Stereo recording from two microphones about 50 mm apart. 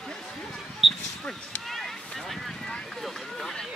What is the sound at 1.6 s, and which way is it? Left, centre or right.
Run, centre.